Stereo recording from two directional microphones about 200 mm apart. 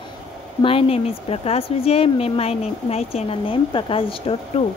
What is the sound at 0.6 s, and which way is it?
A woman's voice, 25° left (ahead or behind).